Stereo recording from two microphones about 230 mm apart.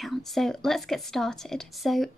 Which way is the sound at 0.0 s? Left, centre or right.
Centre.